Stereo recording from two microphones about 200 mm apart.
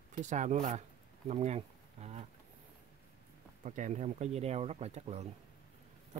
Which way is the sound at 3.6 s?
40° right (ahead or behind).